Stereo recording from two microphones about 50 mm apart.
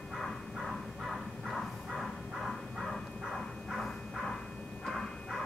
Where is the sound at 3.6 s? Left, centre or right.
Centre.